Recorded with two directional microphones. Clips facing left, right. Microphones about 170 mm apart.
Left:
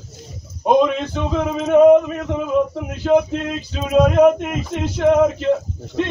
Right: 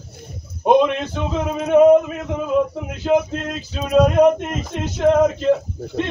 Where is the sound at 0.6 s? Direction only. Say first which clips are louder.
Even; 5° right (ahead or behind).